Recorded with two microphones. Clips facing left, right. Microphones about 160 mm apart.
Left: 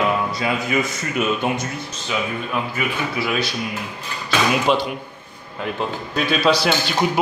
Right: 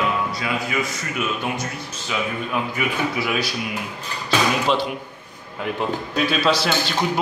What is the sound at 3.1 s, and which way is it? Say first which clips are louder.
Speech: left 1 dB; 15° right (ahead or behind).